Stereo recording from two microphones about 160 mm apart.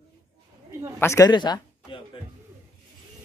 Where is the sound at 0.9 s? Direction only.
20° left (ahead or behind).